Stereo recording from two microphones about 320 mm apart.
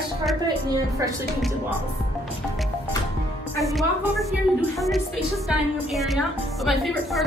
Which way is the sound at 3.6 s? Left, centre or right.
Centre.